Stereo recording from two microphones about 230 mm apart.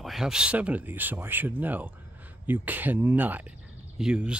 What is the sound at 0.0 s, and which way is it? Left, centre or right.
Speech, centre.